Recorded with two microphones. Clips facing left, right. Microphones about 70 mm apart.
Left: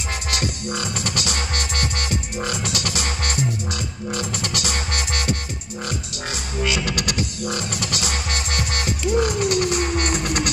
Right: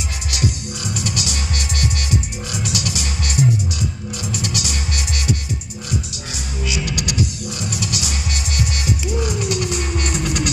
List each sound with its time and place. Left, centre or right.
0.9 s music: left
4.4 s music: left
6.6 s music: left